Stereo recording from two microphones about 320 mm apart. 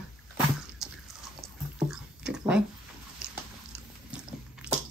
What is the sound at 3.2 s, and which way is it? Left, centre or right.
Dog, centre.